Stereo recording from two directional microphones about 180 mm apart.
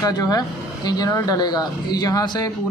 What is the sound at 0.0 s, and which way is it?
Speech, 20° left (ahead or behind).